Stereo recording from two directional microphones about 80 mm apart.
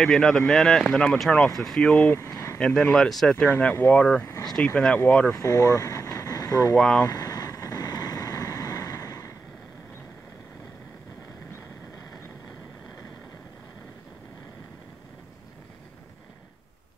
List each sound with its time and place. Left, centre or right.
0.0 s speech: centre
2.1 s a sound: left
2.6 s speech: centre
5.3 s speech: left
6.8 s speech: centre
7.1 s vehicle: left